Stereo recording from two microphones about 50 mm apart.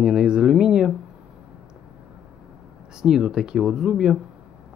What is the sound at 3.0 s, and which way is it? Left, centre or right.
Speech, centre.